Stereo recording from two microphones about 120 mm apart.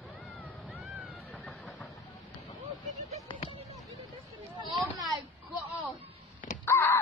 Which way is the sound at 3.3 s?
45° left (ahead or behind).